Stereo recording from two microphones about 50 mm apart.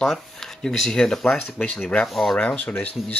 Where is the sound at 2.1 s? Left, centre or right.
Centre.